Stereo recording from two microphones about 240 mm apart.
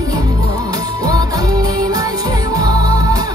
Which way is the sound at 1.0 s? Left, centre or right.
Centre.